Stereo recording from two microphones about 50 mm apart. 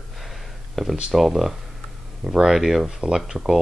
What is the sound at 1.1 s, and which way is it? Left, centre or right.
Speech, centre.